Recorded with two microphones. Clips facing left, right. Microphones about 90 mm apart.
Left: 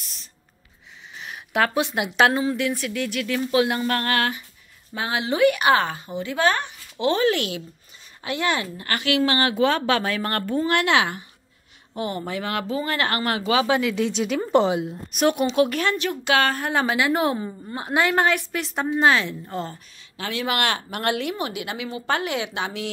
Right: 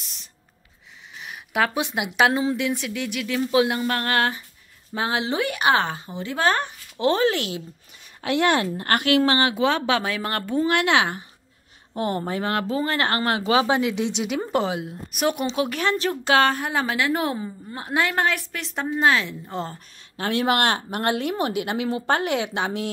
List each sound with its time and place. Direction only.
0.0 s a sound: 20° right (ahead or behind)
1.2 s speech: 5° right (ahead or behind)
2.4 s speech: 20° right (ahead or behind); by 7.2 s 40° right (ahead or behind)
7.2 s speech: 25° right (ahead or behind)
8.2 s a woman's voice: 65° right (ahead or behind); by 9.2 s 45° right (ahead or behind)
9.2 s speech: 25° right (ahead or behind)
11.9 s speech: 45° right (ahead or behind); by 14.6 s 15° right (ahead or behind)
14.6 s a woman's voice: centre (ahead or behind)
15.8 s speech: 30° right (ahead or behind)
16.7 s a woman's voice: 5° left (ahead or behind)
19.6 s a woman's voice: 40° right (ahead or behind)